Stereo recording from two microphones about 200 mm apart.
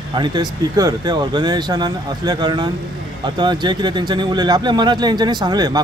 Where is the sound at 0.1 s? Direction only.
20° right (ahead or behind).